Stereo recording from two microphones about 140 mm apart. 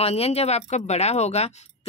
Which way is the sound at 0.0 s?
45° left (ahead or behind).